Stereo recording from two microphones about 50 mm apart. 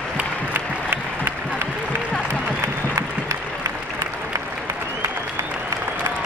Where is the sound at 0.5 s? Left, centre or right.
Right.